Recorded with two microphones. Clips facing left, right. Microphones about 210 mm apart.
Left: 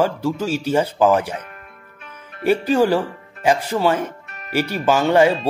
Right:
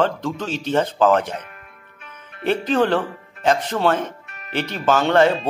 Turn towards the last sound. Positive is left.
turn(degrees=10)  # may be behind; listen again after turning